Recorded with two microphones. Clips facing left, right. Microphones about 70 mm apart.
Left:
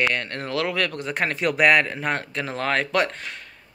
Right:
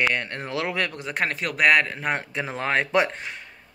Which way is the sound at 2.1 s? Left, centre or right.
Centre.